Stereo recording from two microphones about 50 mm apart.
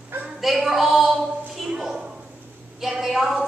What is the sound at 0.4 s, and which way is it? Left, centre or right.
Speech, centre.